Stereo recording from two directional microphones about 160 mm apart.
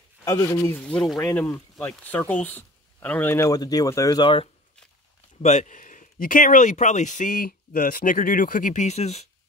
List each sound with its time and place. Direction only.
0.2 s speech: 20° left (ahead or behind)
5.4 s speech: 45° left (ahead or behind)